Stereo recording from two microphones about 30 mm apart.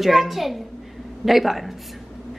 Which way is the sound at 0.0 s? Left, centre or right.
Centre.